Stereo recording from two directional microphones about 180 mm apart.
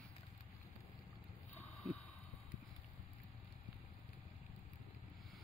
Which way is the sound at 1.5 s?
5° left (ahead or behind).